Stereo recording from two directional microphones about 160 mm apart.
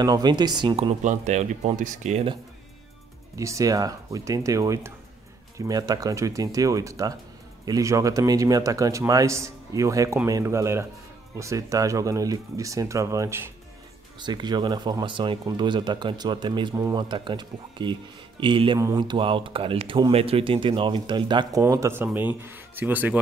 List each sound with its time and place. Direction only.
0.0 s speech: 25° right (ahead or behind)
1.0 s speech: 50° right (ahead or behind)
3.3 s speech: 20° right (ahead or behind)